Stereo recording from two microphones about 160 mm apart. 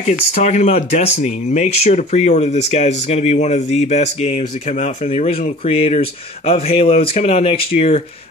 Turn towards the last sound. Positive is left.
turn(degrees=40)  # may be behind; listen again after turning